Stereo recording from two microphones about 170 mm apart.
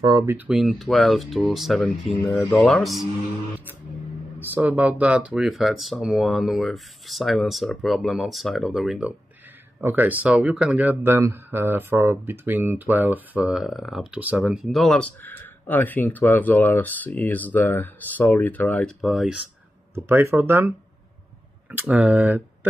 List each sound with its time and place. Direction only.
0.0 s speech: 25° right (ahead or behind)
0.5 s speech: centre (ahead or behind)
4.4 s speech: 10° right (ahead or behind)
20.1 s speech: 15° right (ahead or behind)